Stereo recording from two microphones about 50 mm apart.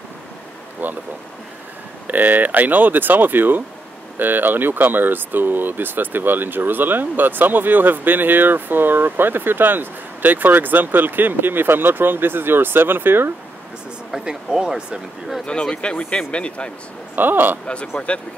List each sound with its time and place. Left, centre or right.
0.8 s speech: right
2.0 s speech: right
14.1 s speech: centre
15.4 s speech: centre
17.1 s speech: right
17.9 s speech: left